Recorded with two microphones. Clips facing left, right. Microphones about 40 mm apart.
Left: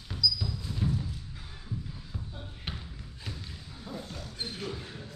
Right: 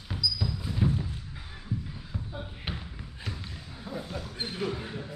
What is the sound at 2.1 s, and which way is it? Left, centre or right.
Basketball bounce, centre.